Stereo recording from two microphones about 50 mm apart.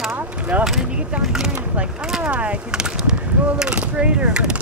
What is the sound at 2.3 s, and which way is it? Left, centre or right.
Speech, right.